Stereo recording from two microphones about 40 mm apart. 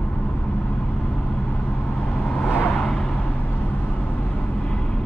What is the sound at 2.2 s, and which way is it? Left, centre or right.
Vehicle, left.